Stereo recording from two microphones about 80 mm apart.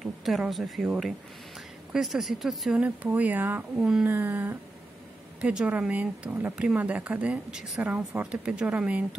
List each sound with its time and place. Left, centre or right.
0.0 s speech: centre
2.8 s speech: centre
3.7 s speech: centre
4.1 s speech: right
5.4 s speech: centre
7.8 s speech: centre